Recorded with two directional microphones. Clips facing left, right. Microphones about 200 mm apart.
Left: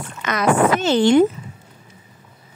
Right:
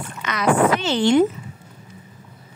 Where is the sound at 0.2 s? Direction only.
45° left (ahead or behind).